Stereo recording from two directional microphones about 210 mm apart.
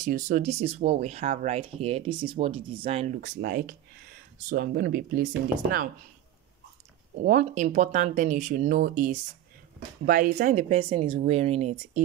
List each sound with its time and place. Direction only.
0.0 s speech: 35° right (ahead or behind)
7.2 s speech: 35° right (ahead or behind)